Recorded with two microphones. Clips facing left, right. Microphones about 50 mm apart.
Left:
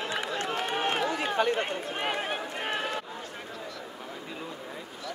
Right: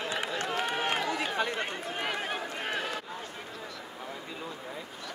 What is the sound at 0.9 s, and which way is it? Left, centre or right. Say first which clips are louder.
Chatter: left 3 dB; left.